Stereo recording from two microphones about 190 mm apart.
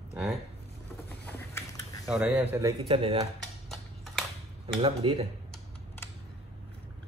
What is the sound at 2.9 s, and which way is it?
Speech, 30° right (ahead or behind).